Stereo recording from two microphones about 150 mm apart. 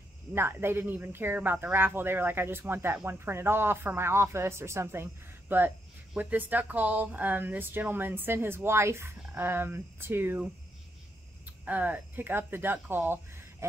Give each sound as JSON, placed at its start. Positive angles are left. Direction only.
{"t": 0.3, "sound": "speech", "side_deg": -15}
{"t": 11.6, "sound": "speech", "side_deg": -10}